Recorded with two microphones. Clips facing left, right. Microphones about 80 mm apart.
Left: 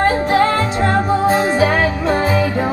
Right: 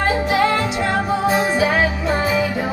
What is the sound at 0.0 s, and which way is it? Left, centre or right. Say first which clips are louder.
Music: left 3 dB; left.